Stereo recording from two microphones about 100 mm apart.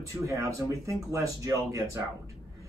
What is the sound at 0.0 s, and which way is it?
Speech, 30° right (ahead or behind).